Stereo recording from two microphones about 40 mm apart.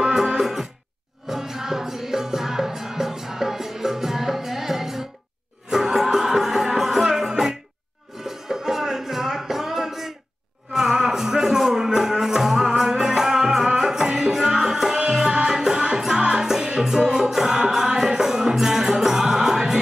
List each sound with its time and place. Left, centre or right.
0.0 s music: centre